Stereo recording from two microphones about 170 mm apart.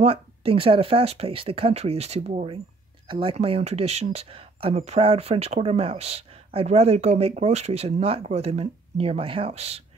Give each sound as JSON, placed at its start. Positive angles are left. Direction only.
{"t": 0.0, "sound": "speech", "side_deg": -35}